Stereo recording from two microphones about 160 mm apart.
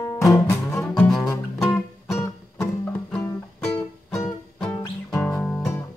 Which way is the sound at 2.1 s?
15° left (ahead or behind).